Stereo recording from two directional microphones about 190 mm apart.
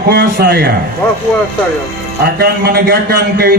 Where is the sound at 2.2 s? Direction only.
55° right (ahead or behind).